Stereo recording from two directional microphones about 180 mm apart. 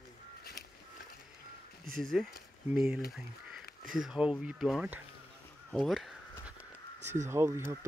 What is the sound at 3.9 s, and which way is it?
Speech, 5° right (ahead or behind).